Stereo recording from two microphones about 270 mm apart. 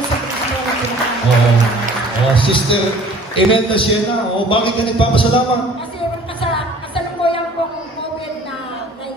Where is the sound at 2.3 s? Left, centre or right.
Centre.